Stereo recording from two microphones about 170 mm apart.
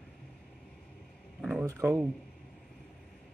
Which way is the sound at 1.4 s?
5° right (ahead or behind).